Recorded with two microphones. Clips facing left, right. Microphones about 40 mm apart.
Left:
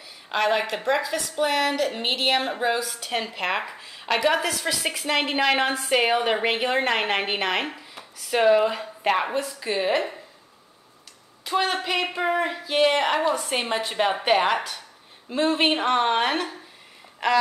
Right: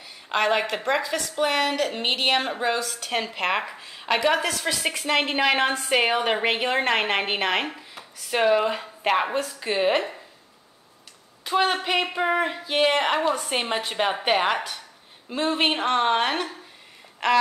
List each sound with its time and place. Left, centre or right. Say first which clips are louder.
0.3 s a woman's voice: even; centre
11.4 s a woman's voice: right 2 dB; centre